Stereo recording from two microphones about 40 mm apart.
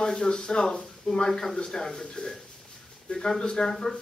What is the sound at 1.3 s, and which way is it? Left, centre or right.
Speech, centre.